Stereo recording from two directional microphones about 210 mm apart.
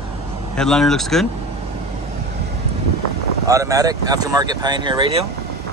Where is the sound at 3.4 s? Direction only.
15° right (ahead or behind).